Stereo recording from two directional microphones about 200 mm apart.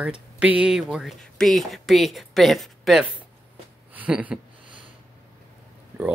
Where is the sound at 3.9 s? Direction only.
5° right (ahead or behind).